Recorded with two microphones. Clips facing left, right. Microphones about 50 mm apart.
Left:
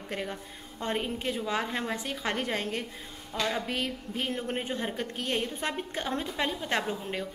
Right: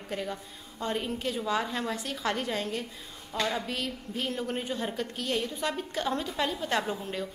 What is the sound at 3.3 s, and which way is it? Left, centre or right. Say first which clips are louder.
Speech: right 1 dB; left.